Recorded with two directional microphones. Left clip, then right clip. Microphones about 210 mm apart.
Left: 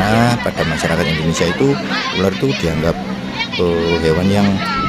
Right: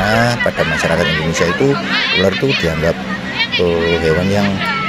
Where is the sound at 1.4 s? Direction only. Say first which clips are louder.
Right 1 dB; 40° left (ahead or behind).